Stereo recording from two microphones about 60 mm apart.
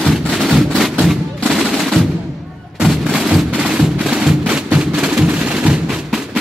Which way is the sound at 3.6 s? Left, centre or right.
Centre.